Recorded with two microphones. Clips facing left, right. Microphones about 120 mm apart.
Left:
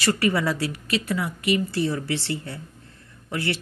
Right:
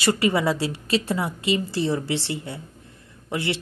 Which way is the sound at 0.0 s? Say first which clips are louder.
Right 1 dB; 20° right (ahead or behind).